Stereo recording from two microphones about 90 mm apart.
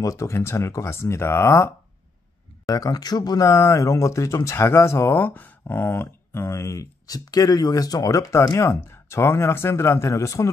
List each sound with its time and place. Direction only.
0.0 s speech: 35° left (ahead or behind)
2.6 s speech: 40° left (ahead or behind)